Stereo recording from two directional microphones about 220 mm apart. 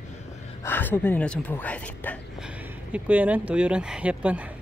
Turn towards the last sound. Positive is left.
turn(degrees=-5)  # may be behind; listen again after turning